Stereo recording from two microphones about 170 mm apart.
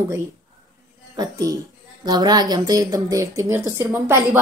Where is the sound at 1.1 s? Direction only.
20° right (ahead or behind).